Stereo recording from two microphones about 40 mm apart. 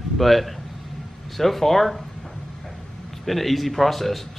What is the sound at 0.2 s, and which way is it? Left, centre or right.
Speech, centre.